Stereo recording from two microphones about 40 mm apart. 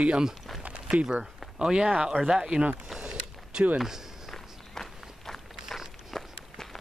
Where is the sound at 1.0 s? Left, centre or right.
Centre.